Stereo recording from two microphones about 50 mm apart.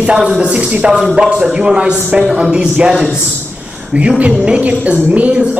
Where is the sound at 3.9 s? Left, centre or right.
Right.